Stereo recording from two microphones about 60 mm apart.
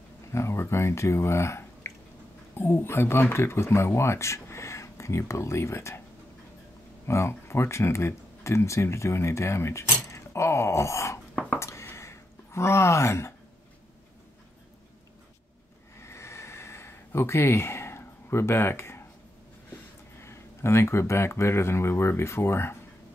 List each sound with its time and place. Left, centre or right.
0.3 s speech: left
7.1 s speech: left
10.1 s groan: left
11.6 s a sound: left
16.0 s a sound: left
19.7 s speech: left